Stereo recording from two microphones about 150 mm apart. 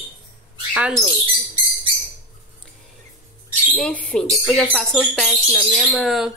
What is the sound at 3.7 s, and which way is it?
Speech, 10° left (ahead or behind).